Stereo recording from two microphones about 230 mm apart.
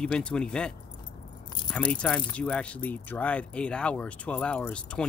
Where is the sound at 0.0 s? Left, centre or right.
Centre.